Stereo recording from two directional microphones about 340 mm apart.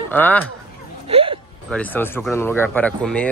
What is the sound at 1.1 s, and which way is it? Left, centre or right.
Speech, centre.